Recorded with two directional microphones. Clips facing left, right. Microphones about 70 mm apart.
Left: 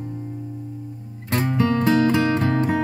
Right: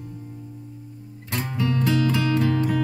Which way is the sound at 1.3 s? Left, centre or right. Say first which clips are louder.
Left 6 dB; left.